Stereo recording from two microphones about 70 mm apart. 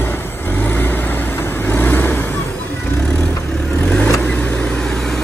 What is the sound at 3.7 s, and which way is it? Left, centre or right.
Vehicle, centre.